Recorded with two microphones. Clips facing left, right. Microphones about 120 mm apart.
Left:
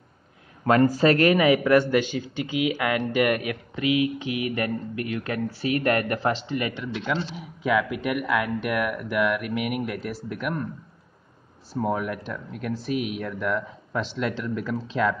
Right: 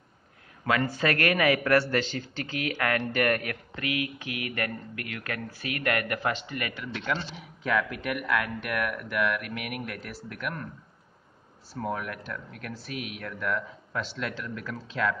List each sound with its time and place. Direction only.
0.7 s speech: 40° left (ahead or behind)
1.0 s a man's voice: 25° left (ahead or behind)
11.7 s a man's voice: 20° left (ahead or behind)